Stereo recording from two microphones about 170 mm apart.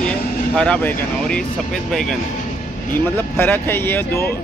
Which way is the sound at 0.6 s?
5° left (ahead or behind).